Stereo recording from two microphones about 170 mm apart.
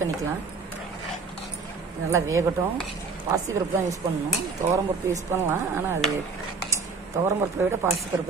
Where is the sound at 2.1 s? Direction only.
15° right (ahead or behind).